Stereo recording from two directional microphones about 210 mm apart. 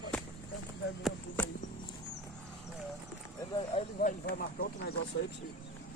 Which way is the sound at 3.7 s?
35° left (ahead or behind).